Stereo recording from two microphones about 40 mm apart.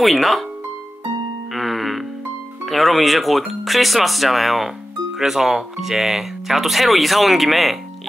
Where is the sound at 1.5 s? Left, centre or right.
Centre.